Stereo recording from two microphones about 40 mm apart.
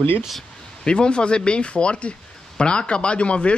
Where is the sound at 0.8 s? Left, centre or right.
Left.